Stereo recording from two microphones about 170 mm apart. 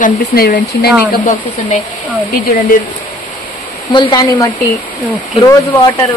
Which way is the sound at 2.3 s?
60° left (ahead or behind).